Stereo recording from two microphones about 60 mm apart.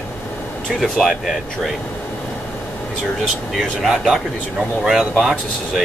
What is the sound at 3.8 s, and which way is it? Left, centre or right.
Speech, centre.